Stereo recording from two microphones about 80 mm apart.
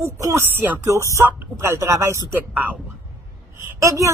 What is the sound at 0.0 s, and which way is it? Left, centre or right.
Speech, right.